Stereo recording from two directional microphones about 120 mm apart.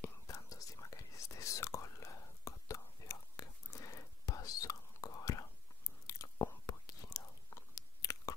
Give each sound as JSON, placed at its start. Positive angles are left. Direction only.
{"t": 0.0, "sound": "whispering", "side_deg": 30}